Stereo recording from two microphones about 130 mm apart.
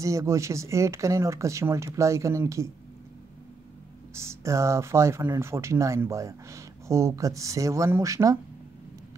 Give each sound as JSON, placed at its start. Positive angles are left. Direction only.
{"t": 0.0, "sound": "speech", "side_deg": -25}
{"t": 4.1, "sound": "speech", "side_deg": -20}